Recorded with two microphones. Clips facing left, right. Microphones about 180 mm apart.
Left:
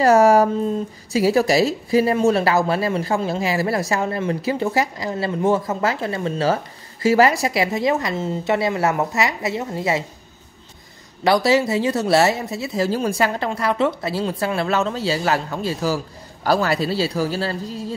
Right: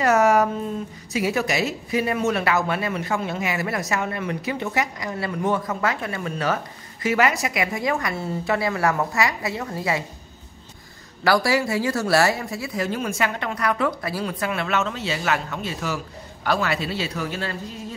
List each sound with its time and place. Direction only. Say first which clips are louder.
0.0 s speech: left 4 dB; 35° left (ahead or behind)
11.2 s speech: left 4 dB; 20° left (ahead or behind)